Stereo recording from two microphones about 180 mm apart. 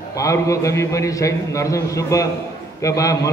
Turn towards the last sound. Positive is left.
turn(degrees=20)  # may be behind; listen again after turning